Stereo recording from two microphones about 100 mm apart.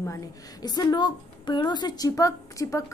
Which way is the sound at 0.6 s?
45° left (ahead or behind).